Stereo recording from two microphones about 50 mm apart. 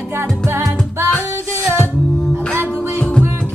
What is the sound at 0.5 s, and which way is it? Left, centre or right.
Music, right.